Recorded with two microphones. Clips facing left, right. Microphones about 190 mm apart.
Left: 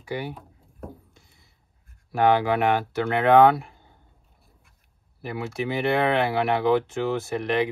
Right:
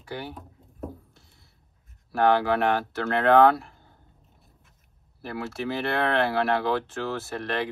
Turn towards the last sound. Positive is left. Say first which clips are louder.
# left 5 dB
turn(degrees=15)  # may be behind; listen again after turning